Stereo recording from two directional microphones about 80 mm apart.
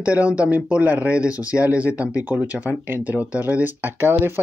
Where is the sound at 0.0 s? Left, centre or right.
Centre.